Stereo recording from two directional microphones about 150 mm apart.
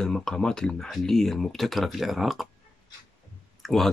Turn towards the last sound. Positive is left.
turn(degrees=0)  # may be behind; listen again after turning